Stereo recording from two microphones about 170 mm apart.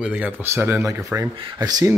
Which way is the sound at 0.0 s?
5° right (ahead or behind).